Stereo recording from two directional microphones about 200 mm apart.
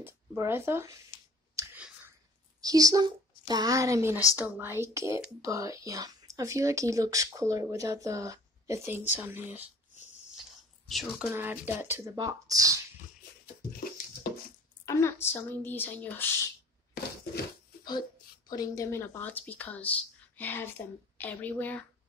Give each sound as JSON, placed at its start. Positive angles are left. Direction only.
{"t": 0.0, "sound": "speech", "side_deg": -10}
{"t": 1.5, "sound": "clicking", "side_deg": -15}
{"t": 2.6, "sound": "a woman's voice", "side_deg": -20}
{"t": 10.9, "sound": "speech", "side_deg": 0}
{"t": 14.9, "sound": "speech", "side_deg": 15}
{"t": 18.5, "sound": "speech", "side_deg": 20}